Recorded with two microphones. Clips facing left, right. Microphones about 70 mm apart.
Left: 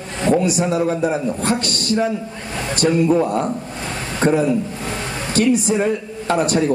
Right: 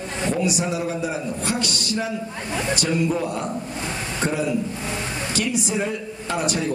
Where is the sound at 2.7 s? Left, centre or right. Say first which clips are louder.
Left 8 dB; left.